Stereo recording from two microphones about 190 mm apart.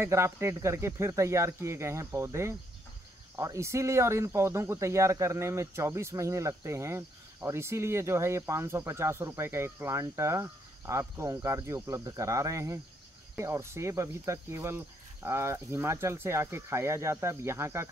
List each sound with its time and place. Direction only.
0.0 s speech: 15° right (ahead or behind)